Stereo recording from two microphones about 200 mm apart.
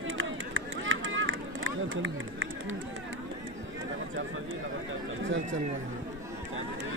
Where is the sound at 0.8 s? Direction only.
75° right (ahead or behind).